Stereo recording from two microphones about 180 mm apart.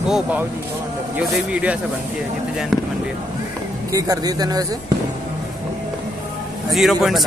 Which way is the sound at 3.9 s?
20° right (ahead or behind).